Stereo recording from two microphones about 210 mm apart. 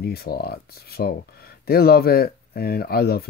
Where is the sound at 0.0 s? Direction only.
45° left (ahead or behind).